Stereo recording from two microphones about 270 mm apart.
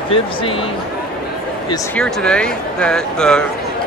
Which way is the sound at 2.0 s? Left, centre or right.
Centre.